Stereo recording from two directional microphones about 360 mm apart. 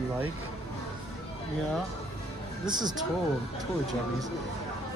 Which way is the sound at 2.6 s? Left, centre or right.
Centre.